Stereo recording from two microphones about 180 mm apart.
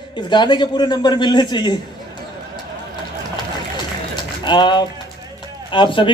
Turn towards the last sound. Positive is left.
turn(degrees=25)  # may be behind; listen again after turning